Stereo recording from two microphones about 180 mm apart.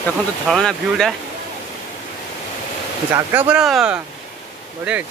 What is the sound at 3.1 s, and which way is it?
Speech, 10° right (ahead or behind).